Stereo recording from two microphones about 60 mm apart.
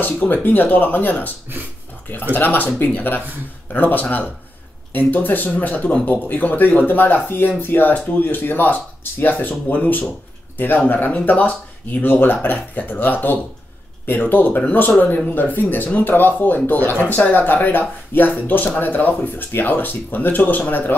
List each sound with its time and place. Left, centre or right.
0.0 s speech: left
2.3 s speech: left